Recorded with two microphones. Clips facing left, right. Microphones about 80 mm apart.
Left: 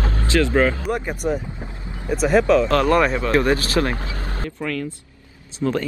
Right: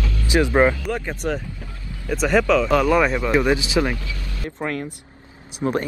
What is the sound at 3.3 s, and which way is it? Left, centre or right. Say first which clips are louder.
Speech: left 1 dB; centre.